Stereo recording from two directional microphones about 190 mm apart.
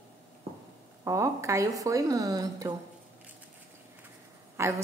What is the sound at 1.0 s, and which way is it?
A woman's voice, 15° right (ahead or behind).